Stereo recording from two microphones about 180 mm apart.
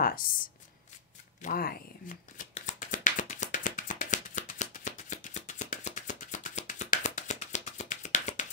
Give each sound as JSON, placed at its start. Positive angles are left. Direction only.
{"t": 1.4, "sound": "shuffling cards", "side_deg": 55}
{"t": 2.5, "sound": "music", "side_deg": 45}